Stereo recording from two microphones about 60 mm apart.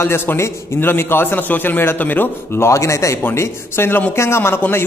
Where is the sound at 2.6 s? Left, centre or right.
Left.